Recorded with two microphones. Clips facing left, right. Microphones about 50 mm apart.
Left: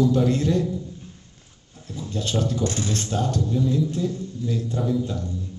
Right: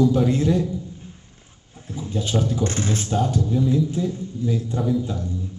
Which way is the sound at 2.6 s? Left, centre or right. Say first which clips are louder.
Right 1 dB; right.